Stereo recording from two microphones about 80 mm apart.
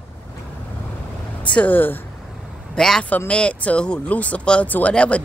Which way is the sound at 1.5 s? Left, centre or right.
Centre.